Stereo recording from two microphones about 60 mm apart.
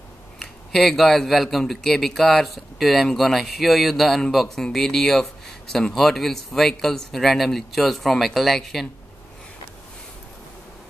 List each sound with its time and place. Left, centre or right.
0.4 s speech: centre